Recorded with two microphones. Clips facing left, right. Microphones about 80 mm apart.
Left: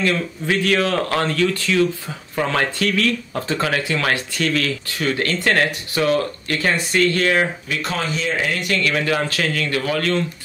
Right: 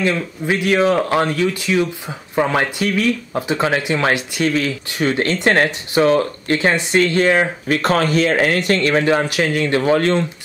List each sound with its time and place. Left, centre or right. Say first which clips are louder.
0.0 s speech: right 2 dB; centre
7.6 s speech: right 8 dB; right
8.5 s speech: right 5 dB; right
9.2 s speech: right 4 dB; centre